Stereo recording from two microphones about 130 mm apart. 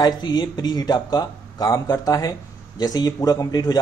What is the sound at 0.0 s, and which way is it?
A man's voice, 35° left (ahead or behind).